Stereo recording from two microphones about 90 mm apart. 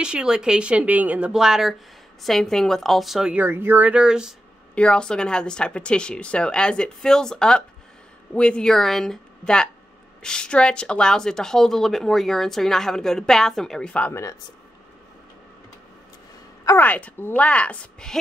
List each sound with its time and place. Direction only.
0.0 s speech: 10° right (ahead or behind)
1.3 s speech: 5° right (ahead or behind)
3.3 s speech: 25° right (ahead or behind); by 4.4 s 5° right (ahead or behind)
4.7 s speech: 10° left (ahead or behind)
16.8 s speech: 15° left (ahead or behind)